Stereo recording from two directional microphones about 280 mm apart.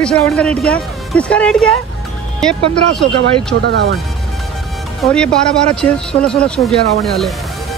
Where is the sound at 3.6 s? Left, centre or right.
Right.